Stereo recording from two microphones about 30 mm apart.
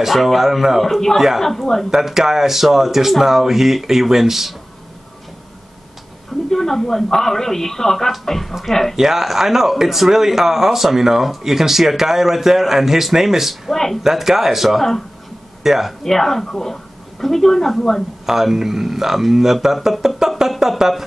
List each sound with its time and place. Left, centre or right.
0.0 s speech: centre
1.4 s speech: centre
1.9 s speech: centre
6.5 s speech: centre
8.9 s speech: centre
13.7 s speech: centre
14.0 s speech: centre
14.8 s speech: centre
15.6 s speech: centre
16.0 s speech: centre
18.2 s speech: centre